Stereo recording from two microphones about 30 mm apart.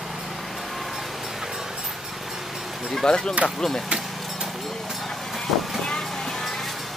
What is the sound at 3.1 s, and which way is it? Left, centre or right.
Speech, left.